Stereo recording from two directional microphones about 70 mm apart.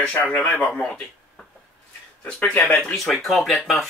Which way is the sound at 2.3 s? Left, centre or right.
Left.